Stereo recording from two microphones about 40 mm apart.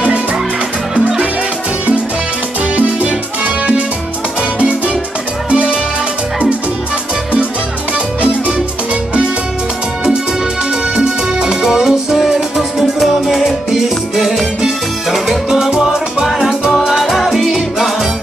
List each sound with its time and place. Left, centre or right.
0.0 s music: right
2.7 s music: right
11.0 s music: centre
16.9 s music: centre